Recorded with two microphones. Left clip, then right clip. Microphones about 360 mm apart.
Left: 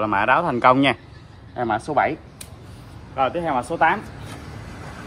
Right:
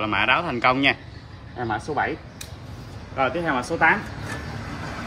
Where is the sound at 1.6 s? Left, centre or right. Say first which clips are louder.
Left 5 dB; left.